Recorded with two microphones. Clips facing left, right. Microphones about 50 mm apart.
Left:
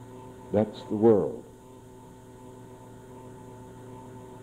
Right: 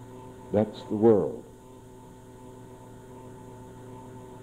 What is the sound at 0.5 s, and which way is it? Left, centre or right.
Speech, centre.